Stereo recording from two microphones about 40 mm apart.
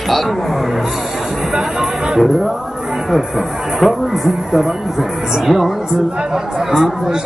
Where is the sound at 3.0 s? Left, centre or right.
Centre.